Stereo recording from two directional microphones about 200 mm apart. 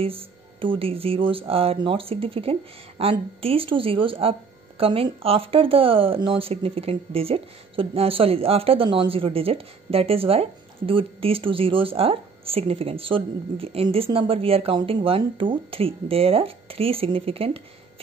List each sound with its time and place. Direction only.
0.0 s speech: 25° right (ahead or behind)